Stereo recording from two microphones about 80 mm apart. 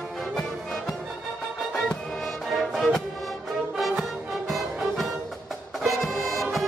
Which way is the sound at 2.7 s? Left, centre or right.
Centre.